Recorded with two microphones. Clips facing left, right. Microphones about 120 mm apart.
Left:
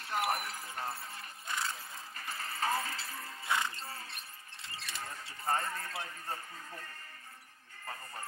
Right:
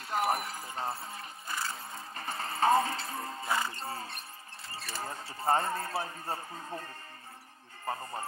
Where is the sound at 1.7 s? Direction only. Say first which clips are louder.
Right 5 dB; 30° right (ahead or behind).